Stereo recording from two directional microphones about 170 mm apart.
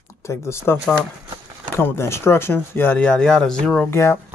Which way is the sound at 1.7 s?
15° left (ahead or behind).